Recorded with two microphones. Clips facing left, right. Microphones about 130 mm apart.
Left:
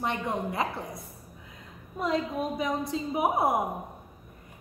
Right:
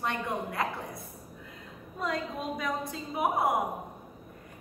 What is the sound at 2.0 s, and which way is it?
A woman's voice, 20° left (ahead or behind).